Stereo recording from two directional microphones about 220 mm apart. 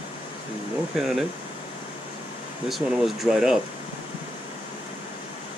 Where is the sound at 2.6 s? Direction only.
Centre (ahead or behind).